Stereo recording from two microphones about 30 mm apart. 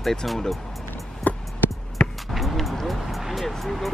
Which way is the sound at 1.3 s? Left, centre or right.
Left.